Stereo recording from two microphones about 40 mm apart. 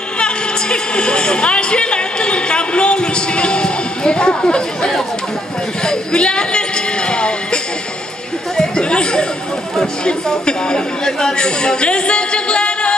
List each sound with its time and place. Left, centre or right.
0.2 s a sound: left
7.1 s music: left
8.5 s chatter: left
10.0 s speech: left